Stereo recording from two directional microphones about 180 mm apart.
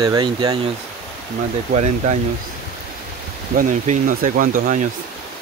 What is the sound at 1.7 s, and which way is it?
Speech, 40° right (ahead or behind).